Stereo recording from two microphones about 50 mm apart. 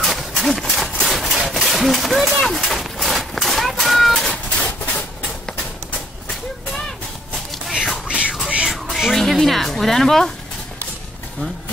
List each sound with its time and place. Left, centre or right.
0.0 s a sound: centre
1.6 s speech: centre
2.4 s a sound: centre
4.1 s cat: centre
7.6 s music: centre
8.1 s music: right
8.9 s music: centre